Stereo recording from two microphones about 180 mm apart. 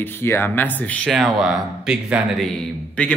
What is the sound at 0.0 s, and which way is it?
Speech, 15° left (ahead or behind).